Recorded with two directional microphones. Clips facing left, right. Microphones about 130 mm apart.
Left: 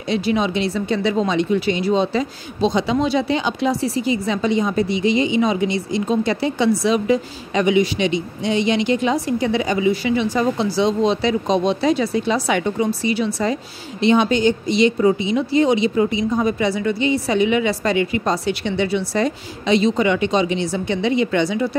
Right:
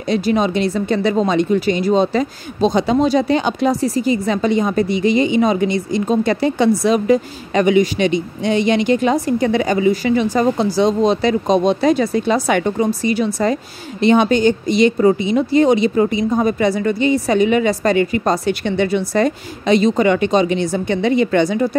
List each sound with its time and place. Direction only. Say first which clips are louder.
0.1 s speech: right 3 dB; 45° right (ahead or behind)